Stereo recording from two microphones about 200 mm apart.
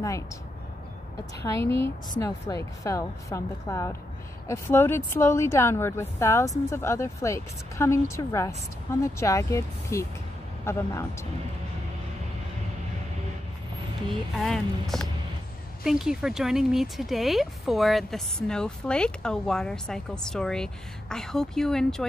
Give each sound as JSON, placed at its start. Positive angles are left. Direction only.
{"t": 1.4, "sound": "a woman's voice", "side_deg": 15}
{"t": 14.3, "sound": "speech", "side_deg": 0}